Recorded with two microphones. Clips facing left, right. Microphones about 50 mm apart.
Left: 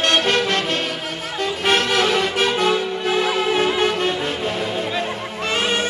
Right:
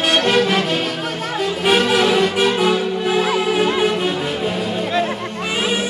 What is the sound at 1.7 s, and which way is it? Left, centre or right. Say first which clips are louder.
Music: right 3 dB; centre.